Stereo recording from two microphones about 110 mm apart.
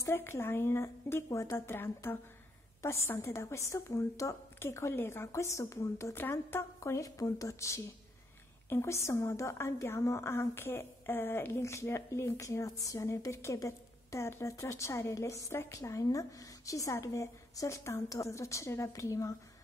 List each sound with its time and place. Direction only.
0.0 s a woman's voice: 20° left (ahead or behind)